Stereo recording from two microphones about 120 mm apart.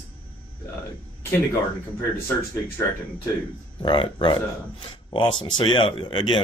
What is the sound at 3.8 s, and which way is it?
Speech, 45° left (ahead or behind).